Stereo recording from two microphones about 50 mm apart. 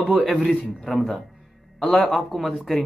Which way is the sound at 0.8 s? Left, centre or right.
Centre.